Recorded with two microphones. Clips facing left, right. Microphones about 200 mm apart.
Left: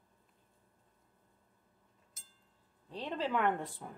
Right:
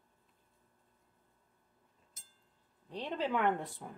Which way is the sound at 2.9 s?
15° right (ahead or behind).